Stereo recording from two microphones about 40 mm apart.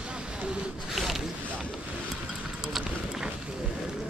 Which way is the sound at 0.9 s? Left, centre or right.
Centre.